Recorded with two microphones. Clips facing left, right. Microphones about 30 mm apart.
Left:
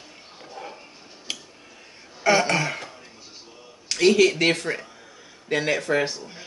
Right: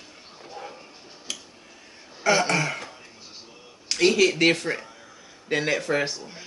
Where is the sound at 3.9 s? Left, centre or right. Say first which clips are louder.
Left 2 dB; centre.